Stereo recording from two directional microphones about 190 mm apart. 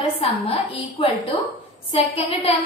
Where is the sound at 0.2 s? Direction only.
30° left (ahead or behind).